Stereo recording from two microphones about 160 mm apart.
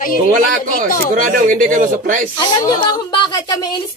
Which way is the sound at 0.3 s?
55° right (ahead or behind).